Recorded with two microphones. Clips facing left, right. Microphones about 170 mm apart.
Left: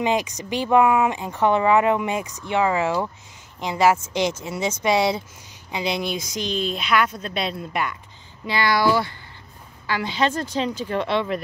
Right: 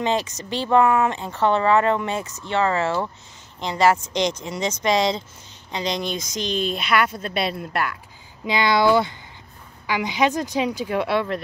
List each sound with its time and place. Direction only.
0.0 s speech: 10° left (ahead or behind)
6.3 s mechanisms: 5° left (ahead or behind)
8.5 s speech: 20° right (ahead or behind); by 11.4 s 5° right (ahead or behind)